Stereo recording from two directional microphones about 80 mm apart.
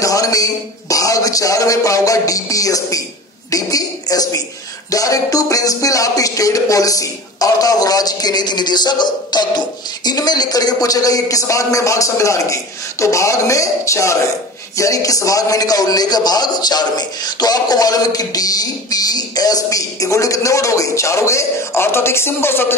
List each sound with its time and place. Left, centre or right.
0.0 s a man's voice: left